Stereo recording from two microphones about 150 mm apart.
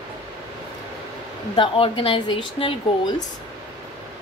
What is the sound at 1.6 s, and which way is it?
Speech, 35° left (ahead or behind).